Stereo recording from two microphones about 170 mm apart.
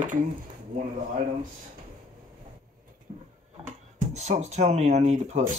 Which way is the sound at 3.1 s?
35° right (ahead or behind).